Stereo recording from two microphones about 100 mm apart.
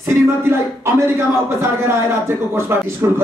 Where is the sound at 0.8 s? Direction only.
25° right (ahead or behind).